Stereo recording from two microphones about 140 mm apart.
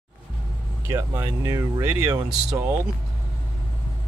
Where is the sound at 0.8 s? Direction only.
20° right (ahead or behind).